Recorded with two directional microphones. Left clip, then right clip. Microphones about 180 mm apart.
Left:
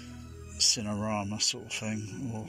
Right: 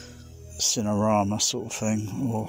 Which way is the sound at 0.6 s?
20° right (ahead or behind).